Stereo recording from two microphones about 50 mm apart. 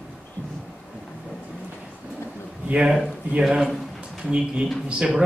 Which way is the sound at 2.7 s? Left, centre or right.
Centre.